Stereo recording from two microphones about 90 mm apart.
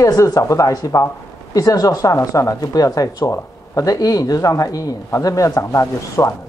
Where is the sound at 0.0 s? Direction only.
40° left (ahead or behind).